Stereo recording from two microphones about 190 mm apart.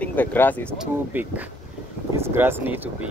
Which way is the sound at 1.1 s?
10° right (ahead or behind).